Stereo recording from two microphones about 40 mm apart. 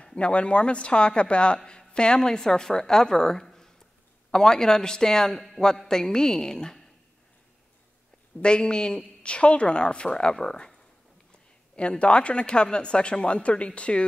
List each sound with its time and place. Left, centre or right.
0.0 s a man's voice: left
8.4 s a man's voice: left
12.0 s speech: left